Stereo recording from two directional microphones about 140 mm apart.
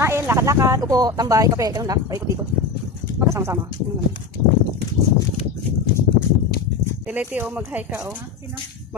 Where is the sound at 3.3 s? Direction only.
20° right (ahead or behind).